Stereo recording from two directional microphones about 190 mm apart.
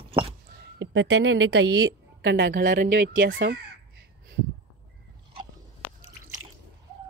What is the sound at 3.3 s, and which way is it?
Speech, 60° right (ahead or behind).